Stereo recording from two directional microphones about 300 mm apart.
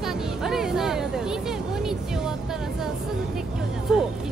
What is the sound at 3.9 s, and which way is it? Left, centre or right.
Speech, centre.